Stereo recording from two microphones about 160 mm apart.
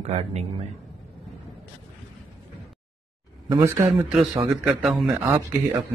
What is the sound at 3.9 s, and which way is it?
A man's voice, 5° right (ahead or behind).